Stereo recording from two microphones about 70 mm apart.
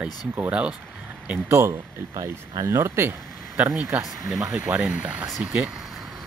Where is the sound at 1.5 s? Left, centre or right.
Right.